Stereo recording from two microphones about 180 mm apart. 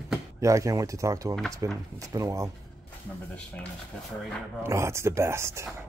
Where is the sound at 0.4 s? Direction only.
15° right (ahead or behind).